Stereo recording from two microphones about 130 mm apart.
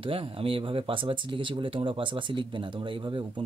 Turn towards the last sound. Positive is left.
turn(degrees=-40)  # may be behind; listen again after turning